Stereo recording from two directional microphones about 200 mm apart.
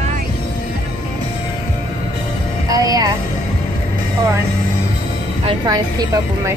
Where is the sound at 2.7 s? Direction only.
20° right (ahead or behind).